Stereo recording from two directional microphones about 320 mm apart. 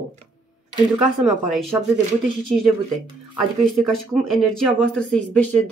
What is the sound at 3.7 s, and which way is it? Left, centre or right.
Speech, centre.